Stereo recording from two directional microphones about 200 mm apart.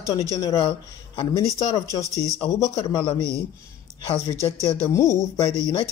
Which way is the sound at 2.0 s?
15° right (ahead or behind).